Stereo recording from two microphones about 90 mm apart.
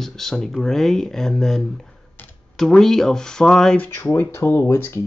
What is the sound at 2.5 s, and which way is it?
Speech, 5° left (ahead or behind).